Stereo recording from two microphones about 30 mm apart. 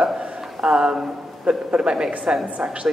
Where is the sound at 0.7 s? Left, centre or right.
Right.